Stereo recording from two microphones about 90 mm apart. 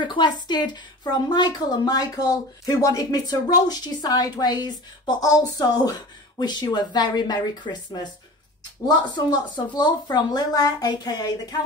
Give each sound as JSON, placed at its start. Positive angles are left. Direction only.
{"t": 0.0, "sound": "a woman's voice", "side_deg": 60}